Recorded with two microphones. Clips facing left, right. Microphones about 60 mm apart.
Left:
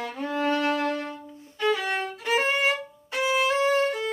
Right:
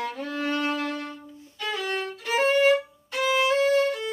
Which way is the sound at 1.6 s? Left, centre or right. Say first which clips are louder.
Left 4 dB; centre.